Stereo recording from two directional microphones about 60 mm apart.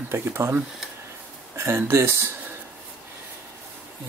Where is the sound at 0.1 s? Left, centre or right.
Right.